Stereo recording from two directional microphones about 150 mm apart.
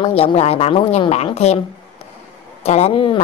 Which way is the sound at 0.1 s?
40° left (ahead or behind).